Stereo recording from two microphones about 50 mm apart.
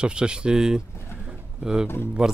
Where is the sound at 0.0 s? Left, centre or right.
Centre.